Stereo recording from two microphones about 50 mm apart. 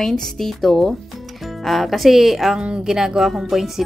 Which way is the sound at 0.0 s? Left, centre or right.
Centre.